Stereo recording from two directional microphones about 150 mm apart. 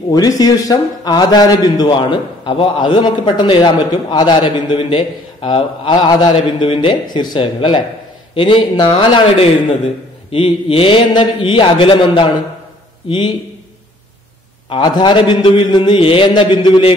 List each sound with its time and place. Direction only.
0.1 s a man's voice: 25° left (ahead or behind)
14.7 s a man's voice: 30° left (ahead or behind)